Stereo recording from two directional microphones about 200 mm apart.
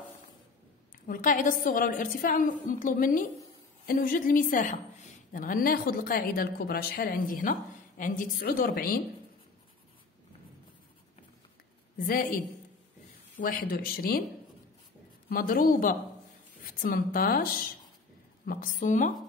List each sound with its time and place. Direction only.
1.0 s a woman's voice: 45° left (ahead or behind)
12.1 s a woman's voice: 45° left (ahead or behind)
13.4 s a woman's voice: 45° left (ahead or behind)
15.2 s a woman's voice: 45° left (ahead or behind)